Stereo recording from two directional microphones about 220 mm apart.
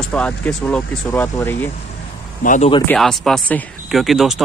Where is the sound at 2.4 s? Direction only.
35° left (ahead or behind).